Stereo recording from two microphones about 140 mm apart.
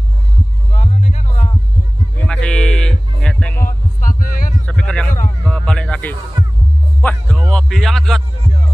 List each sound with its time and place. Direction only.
0.7 s music: 55° left (ahead or behind)
2.1 s music: 5° left (ahead or behind)
3.6 s heart sounds: 75° left (ahead or behind)
4.6 s a sound: 5° left (ahead or behind)
5.4 s music: 5° left (ahead or behind)
7.5 s speech: centre (ahead or behind)